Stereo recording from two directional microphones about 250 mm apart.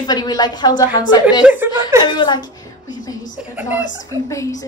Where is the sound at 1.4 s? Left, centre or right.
Centre.